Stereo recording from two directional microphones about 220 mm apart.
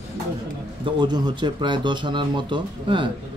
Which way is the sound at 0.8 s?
20° right (ahead or behind).